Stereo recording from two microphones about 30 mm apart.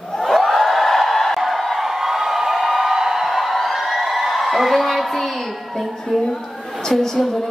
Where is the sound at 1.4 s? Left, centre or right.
Centre.